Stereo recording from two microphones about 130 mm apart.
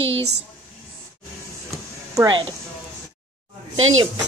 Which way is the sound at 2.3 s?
40° right (ahead or behind).